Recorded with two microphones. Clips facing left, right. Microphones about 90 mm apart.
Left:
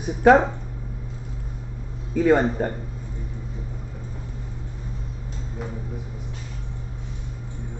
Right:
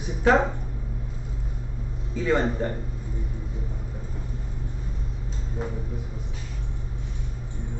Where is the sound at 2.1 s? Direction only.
50° left (ahead or behind).